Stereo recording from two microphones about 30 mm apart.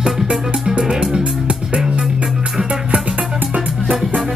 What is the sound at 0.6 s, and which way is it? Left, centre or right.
Music, right.